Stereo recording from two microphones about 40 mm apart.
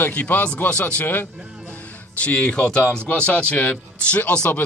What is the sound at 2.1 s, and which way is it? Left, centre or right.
Speech, left.